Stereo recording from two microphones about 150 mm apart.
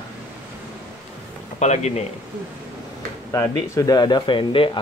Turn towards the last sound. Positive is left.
turn(degrees=35)  # may be behind; listen again after turning